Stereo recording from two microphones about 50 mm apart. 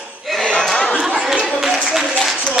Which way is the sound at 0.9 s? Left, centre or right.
Centre.